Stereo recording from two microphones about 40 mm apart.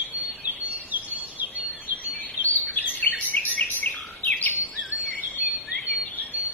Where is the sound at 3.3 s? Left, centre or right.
Left.